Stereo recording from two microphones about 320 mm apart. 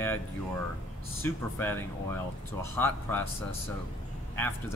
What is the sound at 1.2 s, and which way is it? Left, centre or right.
Speech, centre.